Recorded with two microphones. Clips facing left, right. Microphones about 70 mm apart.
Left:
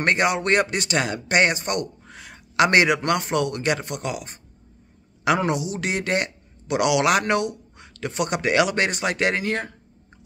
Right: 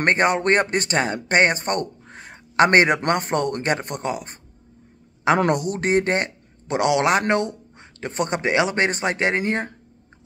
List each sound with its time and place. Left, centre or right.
0.0 s speech: right
5.4 s speech: right